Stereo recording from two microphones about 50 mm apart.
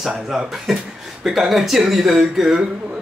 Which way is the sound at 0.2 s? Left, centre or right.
Centre.